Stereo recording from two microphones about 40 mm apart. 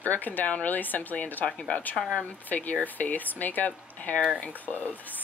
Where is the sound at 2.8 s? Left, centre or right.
Left.